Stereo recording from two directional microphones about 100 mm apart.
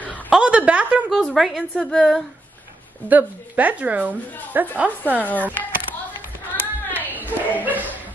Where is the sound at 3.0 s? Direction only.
15° right (ahead or behind).